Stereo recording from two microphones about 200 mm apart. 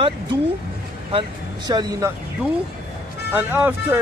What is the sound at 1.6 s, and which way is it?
Speech, 20° right (ahead or behind).